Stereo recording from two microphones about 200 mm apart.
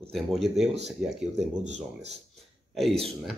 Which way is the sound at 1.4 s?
35° right (ahead or behind).